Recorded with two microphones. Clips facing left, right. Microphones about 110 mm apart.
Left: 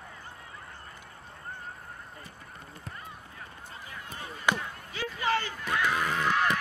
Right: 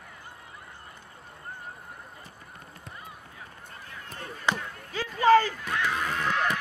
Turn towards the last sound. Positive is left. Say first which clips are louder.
# left 1 dB
turn(degrees=5)  # may be behind; listen again after turning